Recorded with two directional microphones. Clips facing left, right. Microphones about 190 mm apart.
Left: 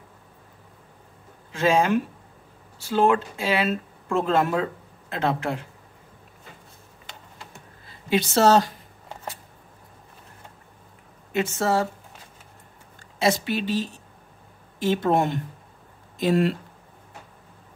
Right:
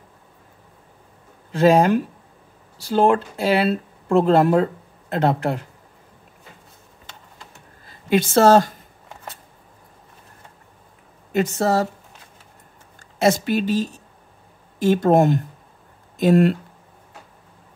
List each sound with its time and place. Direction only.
1.5 s speech: 40° right (ahead or behind)
8.1 s speech: 50° right (ahead or behind)
11.3 s speech: 40° right (ahead or behind)
13.2 s speech: 45° right (ahead or behind)